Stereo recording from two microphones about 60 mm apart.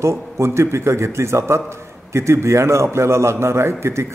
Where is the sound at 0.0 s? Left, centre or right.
Right.